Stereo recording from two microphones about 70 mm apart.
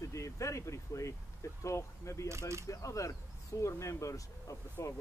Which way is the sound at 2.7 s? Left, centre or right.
Left.